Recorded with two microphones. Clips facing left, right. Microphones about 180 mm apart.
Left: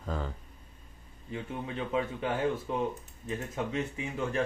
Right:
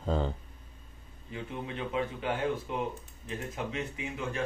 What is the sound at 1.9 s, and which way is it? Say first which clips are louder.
Speech: left 2 dB; 30° left (ahead or behind).